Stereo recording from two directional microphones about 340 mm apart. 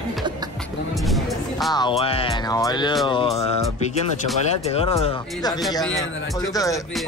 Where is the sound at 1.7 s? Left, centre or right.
Centre.